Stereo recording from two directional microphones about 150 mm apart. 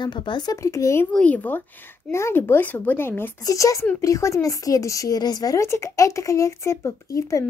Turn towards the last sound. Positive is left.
turn(degrees=20)  # may be behind; listen again after turning